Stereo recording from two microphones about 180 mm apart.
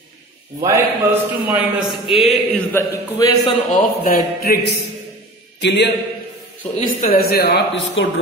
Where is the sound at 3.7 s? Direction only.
50° left (ahead or behind).